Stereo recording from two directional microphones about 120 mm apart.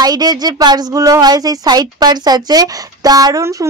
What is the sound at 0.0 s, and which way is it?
Speech, 35° right (ahead or behind).